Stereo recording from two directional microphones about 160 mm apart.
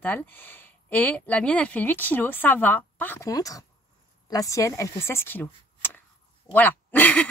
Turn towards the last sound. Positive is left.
turn(degrees=10)  # may be behind; listen again after turning